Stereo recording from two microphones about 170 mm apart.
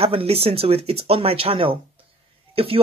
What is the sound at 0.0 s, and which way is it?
A woman's voice, 35° right (ahead or behind).